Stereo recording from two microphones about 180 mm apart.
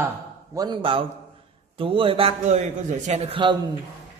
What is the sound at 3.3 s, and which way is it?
Speech, 25° right (ahead or behind).